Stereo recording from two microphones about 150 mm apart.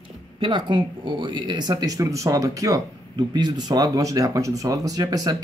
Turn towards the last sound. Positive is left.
turn(degrees=-25)  # may be behind; listen again after turning